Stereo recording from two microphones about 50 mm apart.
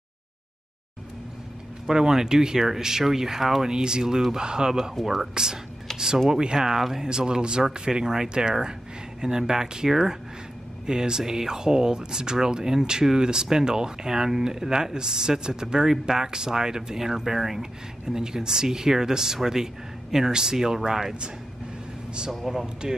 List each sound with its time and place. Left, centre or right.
1.9 s speech: centre
6.1 s speech: centre
6.4 s speech: centre
22.3 s speech: centre